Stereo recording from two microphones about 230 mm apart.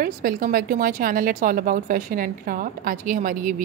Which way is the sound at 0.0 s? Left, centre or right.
Right.